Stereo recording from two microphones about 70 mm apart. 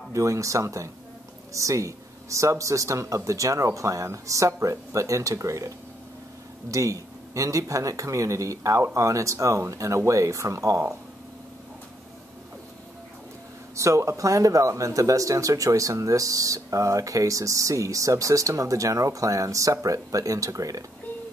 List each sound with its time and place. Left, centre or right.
0.1 s speech: right
6.7 s speech: right
13.7 s speech: right